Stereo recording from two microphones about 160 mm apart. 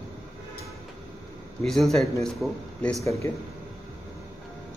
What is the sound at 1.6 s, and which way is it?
A man's voice, centre (ahead or behind).